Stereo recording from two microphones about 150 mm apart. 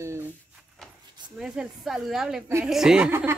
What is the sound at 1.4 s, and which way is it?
Speech, 5° right (ahead or behind).